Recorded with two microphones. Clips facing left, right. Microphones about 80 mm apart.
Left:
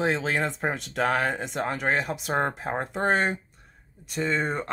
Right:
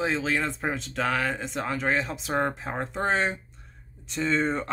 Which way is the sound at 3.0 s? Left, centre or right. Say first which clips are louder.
Left 2 dB; left.